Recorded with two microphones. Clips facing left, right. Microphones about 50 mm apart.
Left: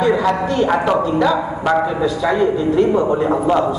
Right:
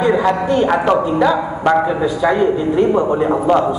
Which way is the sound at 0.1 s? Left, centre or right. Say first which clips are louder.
Right 1 dB; centre.